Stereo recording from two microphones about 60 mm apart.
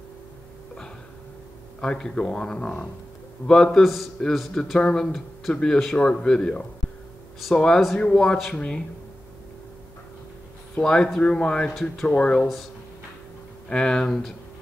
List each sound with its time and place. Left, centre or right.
1.8 s speech: centre
3.8 s speech: centre
4.7 s speech: centre
10.8 s speech: centre
13.7 s speech: centre